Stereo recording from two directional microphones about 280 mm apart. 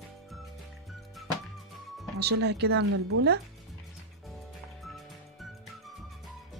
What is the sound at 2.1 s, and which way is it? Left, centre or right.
Speech, right.